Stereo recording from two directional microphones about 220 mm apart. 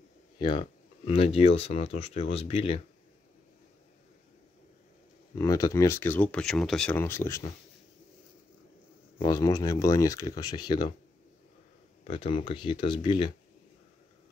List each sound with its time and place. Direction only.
0.4 s speech: 25° left (ahead or behind)
5.4 s speech: 15° left (ahead or behind)
9.2 s speech: 15° left (ahead or behind)
12.1 s speech: 25° left (ahead or behind)